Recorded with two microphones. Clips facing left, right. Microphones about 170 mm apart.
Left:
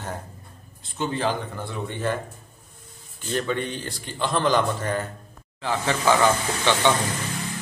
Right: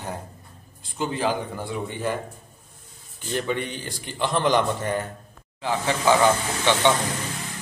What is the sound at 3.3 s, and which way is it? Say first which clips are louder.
A man's voice: left 1 dB; 15° right (ahead or behind).